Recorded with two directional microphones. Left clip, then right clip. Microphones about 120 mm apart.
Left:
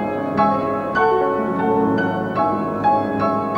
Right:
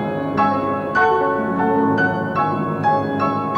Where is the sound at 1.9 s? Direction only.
40° right (ahead or behind).